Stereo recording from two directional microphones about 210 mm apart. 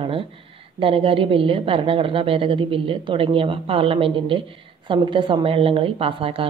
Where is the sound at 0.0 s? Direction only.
25° right (ahead or behind).